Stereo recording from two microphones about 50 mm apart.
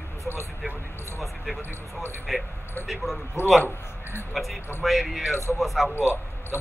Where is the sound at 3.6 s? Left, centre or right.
Left.